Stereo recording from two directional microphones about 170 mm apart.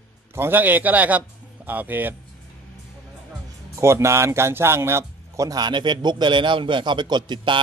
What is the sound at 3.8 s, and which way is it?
Speech, 15° right (ahead or behind).